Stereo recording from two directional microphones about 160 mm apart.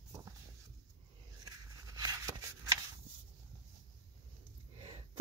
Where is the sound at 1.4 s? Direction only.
25° right (ahead or behind).